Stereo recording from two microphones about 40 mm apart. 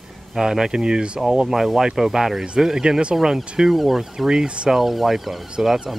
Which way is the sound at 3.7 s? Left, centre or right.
Centre.